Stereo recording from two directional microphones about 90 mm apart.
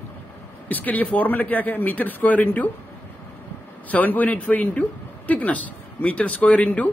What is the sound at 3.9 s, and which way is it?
A man's voice, 20° left (ahead or behind).